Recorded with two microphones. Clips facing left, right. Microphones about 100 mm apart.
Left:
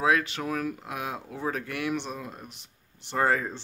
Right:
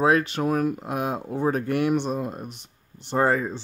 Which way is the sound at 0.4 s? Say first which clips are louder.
Right 7 dB; 45° right (ahead or behind).